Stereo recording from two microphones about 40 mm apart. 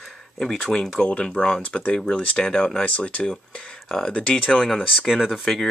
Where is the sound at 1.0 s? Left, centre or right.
Left.